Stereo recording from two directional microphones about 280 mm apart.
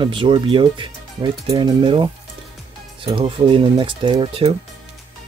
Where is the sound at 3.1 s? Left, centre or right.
Centre.